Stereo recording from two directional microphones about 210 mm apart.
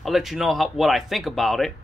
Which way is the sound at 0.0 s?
Centre (ahead or behind).